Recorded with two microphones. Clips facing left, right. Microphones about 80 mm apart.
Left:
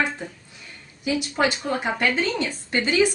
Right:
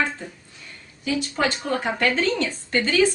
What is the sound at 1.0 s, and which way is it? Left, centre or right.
A woman's voice, centre.